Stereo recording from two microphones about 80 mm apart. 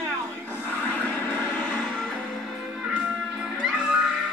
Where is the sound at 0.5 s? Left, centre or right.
Right.